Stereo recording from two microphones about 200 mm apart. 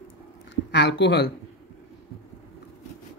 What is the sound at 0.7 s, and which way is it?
Speech, 60° left (ahead or behind).